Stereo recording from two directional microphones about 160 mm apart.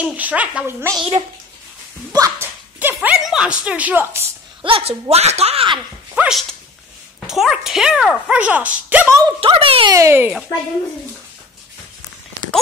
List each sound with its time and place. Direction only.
0.0 s a child's voice: 10° right (ahead or behind)
2.1 s dog: 20° right (ahead or behind)
3.2 s a woman's voice: centre (ahead or behind)
4.6 s speech: 35° right (ahead or behind)
6.1 s speech: 5° right (ahead or behind)
9.4 s speech: 35° right (ahead or behind)
9.9 s a child's voice: 15° right (ahead or behind)